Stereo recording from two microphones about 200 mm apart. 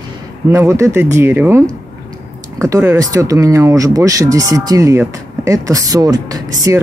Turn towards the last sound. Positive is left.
turn(degrees=-15)  # may be behind; listen again after turning